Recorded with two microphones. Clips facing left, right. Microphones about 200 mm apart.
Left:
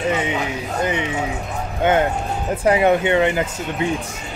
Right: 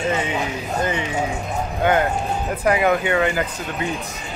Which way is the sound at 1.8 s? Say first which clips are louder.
Left 2 dB; 20° left (ahead or behind).